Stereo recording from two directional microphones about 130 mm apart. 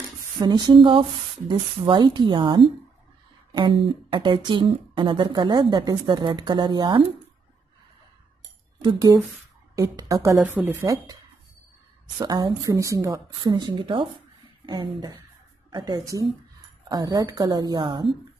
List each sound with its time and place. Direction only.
0.4 s a woman's voice: 35° right (ahead or behind)
8.8 s a woman's voice: 30° right (ahead or behind)
10.4 s speech: 15° right (ahead or behind)
12.2 s a woman's voice: 30° right (ahead or behind)
13.4 s a woman's voice: 35° right (ahead or behind)